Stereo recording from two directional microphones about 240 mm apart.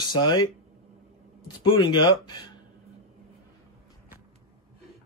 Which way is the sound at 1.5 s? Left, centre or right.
Centre.